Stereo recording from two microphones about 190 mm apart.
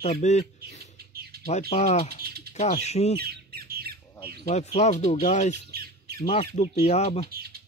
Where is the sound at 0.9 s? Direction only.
55° right (ahead or behind).